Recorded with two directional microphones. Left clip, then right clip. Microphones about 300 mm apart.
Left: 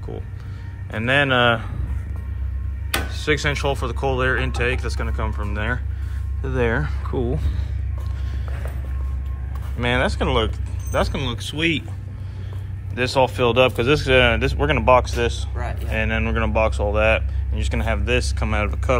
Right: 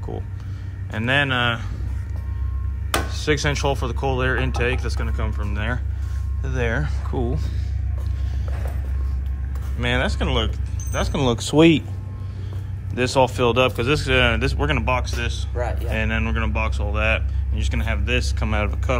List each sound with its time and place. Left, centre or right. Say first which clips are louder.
0.1 s speech: right 1 dB; centre
3.1 s speech: left 3 dB; centre
9.8 s speech: left 2 dB; centre
11.1 s speech: right 8 dB; centre
12.9 s speech: even; centre
15.5 s speech: right 4 dB; right
15.9 s speech: left 5 dB; centre